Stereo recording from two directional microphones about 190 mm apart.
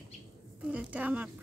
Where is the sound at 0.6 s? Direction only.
5° right (ahead or behind).